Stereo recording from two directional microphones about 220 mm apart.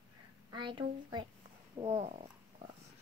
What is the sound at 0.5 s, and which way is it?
Speech, 20° right (ahead or behind).